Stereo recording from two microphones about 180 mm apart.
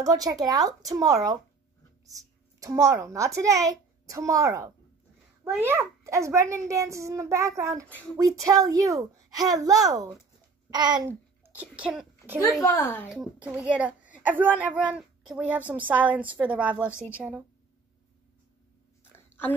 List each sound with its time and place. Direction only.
0.0 s speech: 20° right (ahead or behind)
2.6 s a child's voice: 15° right (ahead or behind)
10.7 s babbling: 25° right (ahead or behind)
11.1 s a sound: 10° right (ahead or behind)
12.6 s speech: 15° left (ahead or behind)
13.1 s a child's voice: 5° right (ahead or behind)
19.1 s a sound: 10° left (ahead or behind)